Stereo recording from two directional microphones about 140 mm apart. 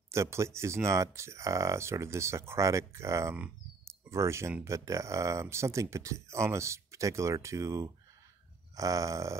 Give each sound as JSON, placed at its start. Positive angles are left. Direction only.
{"t": 0.1, "sound": "speech", "side_deg": -20}